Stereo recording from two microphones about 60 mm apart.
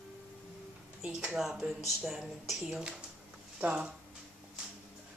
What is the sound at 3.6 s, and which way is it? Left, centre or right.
Speech, right.